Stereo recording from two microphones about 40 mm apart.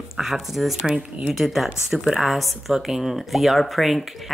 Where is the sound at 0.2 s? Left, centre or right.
Centre.